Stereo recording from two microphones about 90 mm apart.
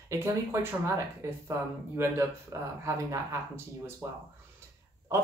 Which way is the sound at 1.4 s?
30° right (ahead or behind).